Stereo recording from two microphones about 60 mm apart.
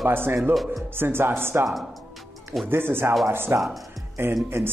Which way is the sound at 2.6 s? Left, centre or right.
Right.